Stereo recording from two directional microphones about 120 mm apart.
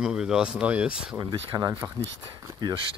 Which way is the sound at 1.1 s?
30° right (ahead or behind).